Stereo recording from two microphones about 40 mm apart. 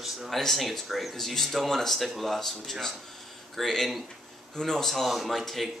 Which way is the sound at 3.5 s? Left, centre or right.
Centre.